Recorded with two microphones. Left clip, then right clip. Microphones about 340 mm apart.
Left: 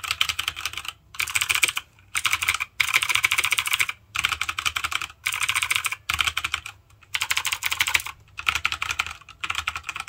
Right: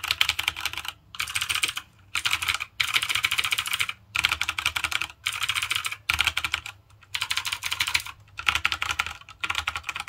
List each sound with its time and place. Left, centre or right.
0.1 s computer keyboard: centre
1.1 s computer keyboard: centre
4.1 s computer keyboard: centre
5.2 s computer keyboard: centre
6.0 s typing: centre
7.1 s typing: centre
8.5 s typing: centre